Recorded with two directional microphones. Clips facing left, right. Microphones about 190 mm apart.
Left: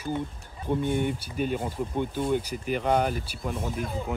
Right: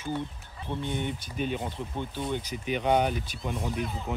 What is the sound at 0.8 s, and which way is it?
Speech, 50° left (ahead or behind).